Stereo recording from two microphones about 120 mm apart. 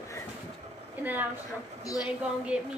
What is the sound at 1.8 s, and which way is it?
Speech, 30° left (ahead or behind).